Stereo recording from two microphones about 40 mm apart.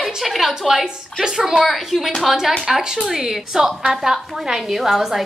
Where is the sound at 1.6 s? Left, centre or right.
Centre.